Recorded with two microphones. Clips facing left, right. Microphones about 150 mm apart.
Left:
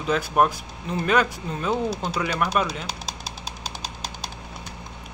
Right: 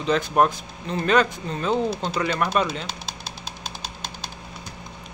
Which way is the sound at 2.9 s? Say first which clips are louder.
Left 1 dB; 40° left (ahead or behind).